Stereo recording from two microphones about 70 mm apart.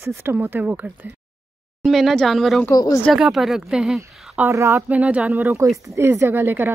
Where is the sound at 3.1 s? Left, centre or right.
Centre.